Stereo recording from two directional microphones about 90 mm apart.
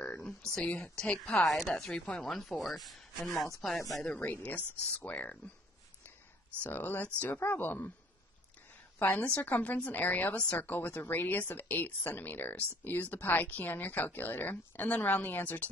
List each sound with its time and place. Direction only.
0.6 s speech: 5° left (ahead or behind)
3.3 s speech: 40° left (ahead or behind)
3.6 s speech: centre (ahead or behind)
4.0 s speech: 15° left (ahead or behind)
6.6 s speech: 20° left (ahead or behind)
9.0 s speech: 20° left (ahead or behind)